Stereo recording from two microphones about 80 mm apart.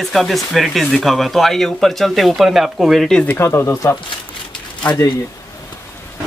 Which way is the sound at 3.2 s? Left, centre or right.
Left.